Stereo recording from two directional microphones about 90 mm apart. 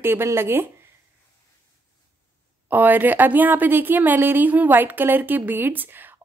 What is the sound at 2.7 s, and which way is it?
Speech, 20° right (ahead or behind).